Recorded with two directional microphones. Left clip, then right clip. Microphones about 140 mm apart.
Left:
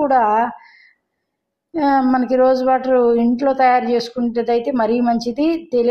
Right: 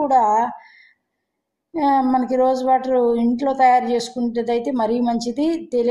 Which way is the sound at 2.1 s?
5° left (ahead or behind).